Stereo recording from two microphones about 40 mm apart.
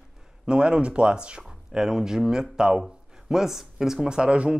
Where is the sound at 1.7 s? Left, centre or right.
Centre.